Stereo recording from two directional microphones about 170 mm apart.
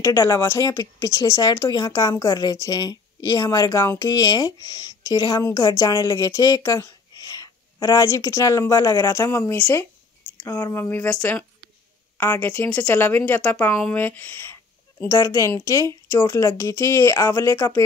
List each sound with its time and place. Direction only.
0.0 s speech: 15° left (ahead or behind)